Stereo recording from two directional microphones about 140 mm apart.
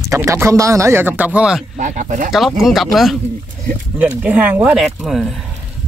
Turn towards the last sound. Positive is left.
turn(degrees=0)  # may be behind; listen again after turning